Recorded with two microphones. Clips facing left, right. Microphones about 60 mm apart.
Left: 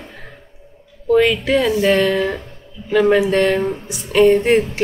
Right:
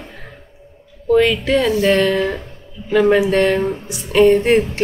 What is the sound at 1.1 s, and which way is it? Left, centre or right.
Speech, centre.